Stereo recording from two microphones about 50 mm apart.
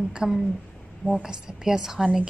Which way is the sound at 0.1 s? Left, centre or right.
Centre.